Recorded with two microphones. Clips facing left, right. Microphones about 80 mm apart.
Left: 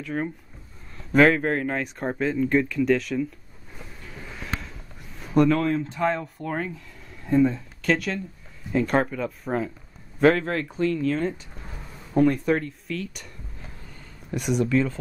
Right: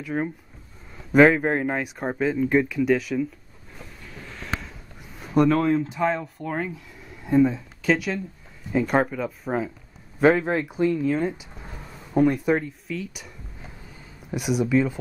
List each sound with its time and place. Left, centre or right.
0.0 s speech: centre
2.0 s speech: centre
4.2 s a sound: centre
5.6 s speech: right
5.9 s speech: centre
14.3 s speech: centre